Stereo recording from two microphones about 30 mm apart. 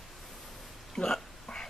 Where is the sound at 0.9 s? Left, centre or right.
Left.